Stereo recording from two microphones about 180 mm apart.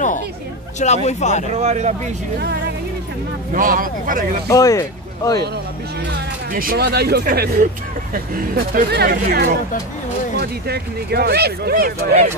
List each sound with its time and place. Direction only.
0.7 s speech: 40° left (ahead or behind)
1.6 s speech: 40° right (ahead or behind)
3.5 s speech: 50° right (ahead or behind)
4.5 s speech: 20° left (ahead or behind)
6.5 s speech: 50° right (ahead or behind)
8.7 s speech: 60° right (ahead or behind)
10.7 s speech: 60° right (ahead or behind)